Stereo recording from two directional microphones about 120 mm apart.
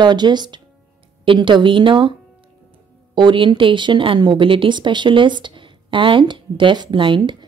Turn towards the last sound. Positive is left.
turn(degrees=-40)  # may be behind; listen again after turning